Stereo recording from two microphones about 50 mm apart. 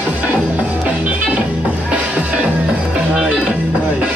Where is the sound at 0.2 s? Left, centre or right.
Right.